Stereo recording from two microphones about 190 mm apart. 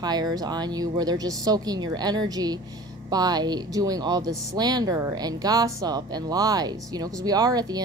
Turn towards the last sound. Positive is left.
turn(degrees=-20)  # may be behind; listen again after turning